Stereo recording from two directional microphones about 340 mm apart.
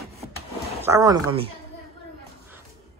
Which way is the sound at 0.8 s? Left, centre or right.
Centre.